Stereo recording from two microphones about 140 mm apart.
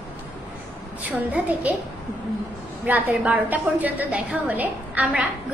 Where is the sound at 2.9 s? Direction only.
10° right (ahead or behind).